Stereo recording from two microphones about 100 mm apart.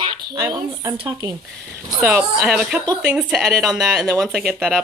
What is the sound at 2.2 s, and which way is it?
Speech, 5° right (ahead or behind).